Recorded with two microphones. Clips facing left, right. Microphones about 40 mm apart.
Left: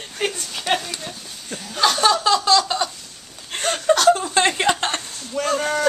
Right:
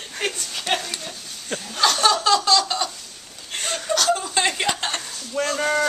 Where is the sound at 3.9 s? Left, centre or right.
Centre.